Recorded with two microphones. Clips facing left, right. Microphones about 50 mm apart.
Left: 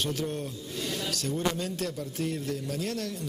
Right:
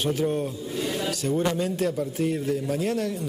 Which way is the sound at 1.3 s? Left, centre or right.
Right.